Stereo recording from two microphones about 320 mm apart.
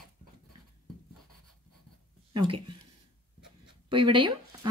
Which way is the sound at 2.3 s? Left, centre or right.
Centre.